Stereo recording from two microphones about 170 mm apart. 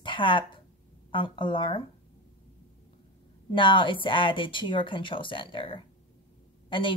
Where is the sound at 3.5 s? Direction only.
30° left (ahead or behind).